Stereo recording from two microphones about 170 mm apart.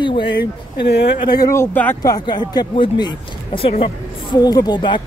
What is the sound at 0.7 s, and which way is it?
Speech, 80° left.